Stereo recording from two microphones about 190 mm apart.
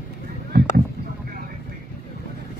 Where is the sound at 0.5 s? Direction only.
60° right (ahead or behind).